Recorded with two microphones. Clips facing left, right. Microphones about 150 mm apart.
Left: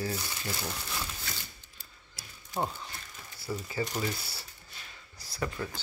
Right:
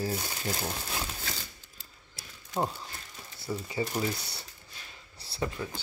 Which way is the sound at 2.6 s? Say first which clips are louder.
Right 2 dB; 5° right (ahead or behind).